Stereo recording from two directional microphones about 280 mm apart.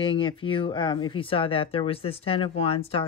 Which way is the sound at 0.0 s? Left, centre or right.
Centre.